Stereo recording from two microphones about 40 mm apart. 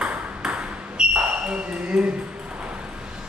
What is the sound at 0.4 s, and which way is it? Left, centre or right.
Ping, right.